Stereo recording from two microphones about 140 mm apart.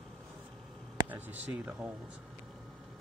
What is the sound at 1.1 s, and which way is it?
Speech, 10° right (ahead or behind).